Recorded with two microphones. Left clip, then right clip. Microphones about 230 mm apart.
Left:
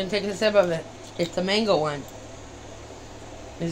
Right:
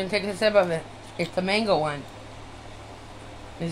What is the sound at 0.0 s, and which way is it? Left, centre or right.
Speech, centre.